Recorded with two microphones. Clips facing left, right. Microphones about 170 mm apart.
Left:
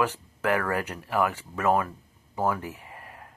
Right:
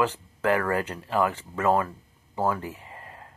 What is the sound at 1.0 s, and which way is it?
Speech, 20° right (ahead or behind).